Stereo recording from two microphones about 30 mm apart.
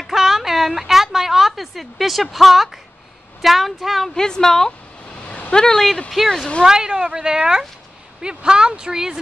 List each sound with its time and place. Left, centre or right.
0.1 s a sound: centre
2.3 s speech: centre
4.1 s a woman's voice: centre
6.2 s a woman's voice: centre
6.6 s speech: right